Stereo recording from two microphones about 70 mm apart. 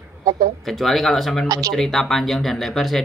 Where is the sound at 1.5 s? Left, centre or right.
Right.